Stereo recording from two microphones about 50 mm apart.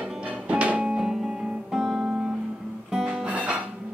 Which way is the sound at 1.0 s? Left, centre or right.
Centre.